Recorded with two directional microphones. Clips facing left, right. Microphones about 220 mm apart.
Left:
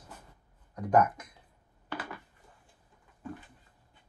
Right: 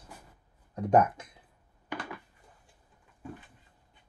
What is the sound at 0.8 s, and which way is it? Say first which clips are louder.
Speech: right 2 dB; 25° right (ahead or behind).